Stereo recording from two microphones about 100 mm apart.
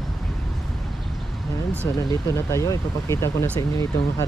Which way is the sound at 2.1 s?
30° left (ahead or behind).